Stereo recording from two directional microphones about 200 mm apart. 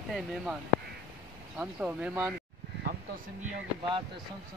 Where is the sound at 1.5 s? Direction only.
5° right (ahead or behind).